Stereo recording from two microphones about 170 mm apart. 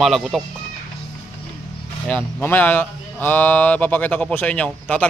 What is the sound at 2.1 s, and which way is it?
A child's voice, 10° left (ahead or behind).